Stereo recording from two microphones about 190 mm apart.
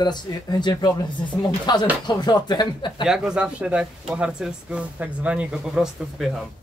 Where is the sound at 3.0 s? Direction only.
5° right (ahead or behind).